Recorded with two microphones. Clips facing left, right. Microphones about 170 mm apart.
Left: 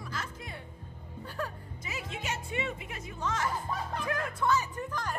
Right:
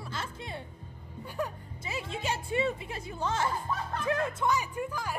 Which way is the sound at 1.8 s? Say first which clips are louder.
Right 4 dB; 30° right (ahead or behind).